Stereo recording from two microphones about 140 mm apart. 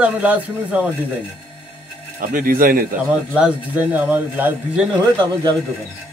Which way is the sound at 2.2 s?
85° right.